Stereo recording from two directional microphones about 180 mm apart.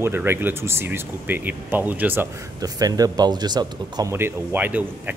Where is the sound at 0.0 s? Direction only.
15° right (ahead or behind).